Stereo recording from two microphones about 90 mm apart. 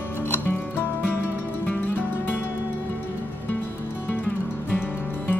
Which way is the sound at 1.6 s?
20° left (ahead or behind).